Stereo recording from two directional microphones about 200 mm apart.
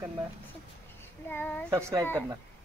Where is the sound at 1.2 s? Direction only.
10° left (ahead or behind).